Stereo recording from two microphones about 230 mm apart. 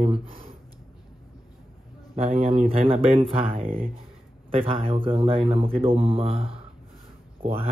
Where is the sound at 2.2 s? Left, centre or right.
Right.